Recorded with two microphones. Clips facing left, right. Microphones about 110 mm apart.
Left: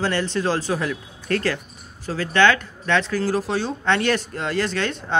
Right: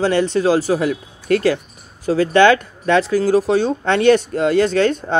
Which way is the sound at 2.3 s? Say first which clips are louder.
Right 4 dB; 15° right (ahead or behind).